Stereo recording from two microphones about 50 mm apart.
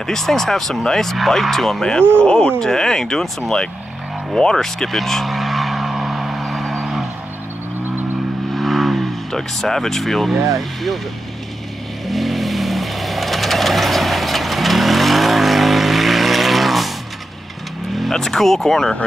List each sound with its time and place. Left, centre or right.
0.0 s speech: centre
2.6 s speech: centre
4.4 s vehicle: centre
8.5 s vehicle: centre
12.1 s vehicle: centre
17.9 s speech: centre